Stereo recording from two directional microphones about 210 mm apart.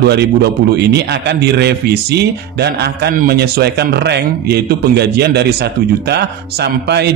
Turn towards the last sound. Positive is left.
turn(degrees=-50)  # may be behind; listen again after turning